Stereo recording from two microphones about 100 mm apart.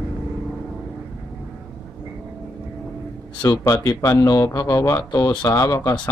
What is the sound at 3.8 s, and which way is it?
Speech, 35° left (ahead or behind).